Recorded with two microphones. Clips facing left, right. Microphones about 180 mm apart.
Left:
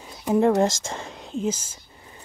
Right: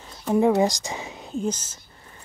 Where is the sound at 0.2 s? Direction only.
Centre (ahead or behind).